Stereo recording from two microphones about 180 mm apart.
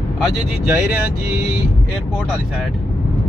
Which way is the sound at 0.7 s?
10° right (ahead or behind).